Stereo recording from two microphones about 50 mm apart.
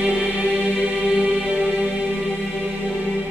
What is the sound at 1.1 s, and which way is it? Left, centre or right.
Music, right.